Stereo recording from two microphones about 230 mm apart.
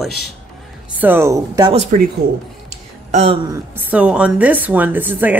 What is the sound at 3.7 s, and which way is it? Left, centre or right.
Speech, centre.